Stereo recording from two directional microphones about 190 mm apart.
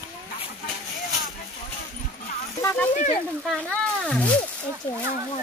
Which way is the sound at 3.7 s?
5° left (ahead or behind).